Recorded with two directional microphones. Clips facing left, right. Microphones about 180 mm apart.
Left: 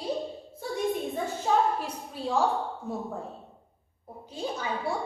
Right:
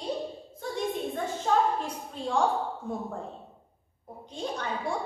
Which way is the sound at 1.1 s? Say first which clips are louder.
Right 2 dB; 10° left (ahead or behind).